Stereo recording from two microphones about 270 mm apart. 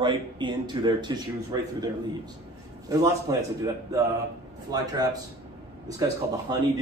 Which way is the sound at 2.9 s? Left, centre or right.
Centre.